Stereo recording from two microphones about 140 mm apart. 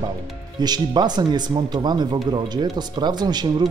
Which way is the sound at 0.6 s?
30° right (ahead or behind).